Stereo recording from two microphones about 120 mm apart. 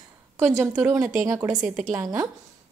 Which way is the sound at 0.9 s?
25° right (ahead or behind).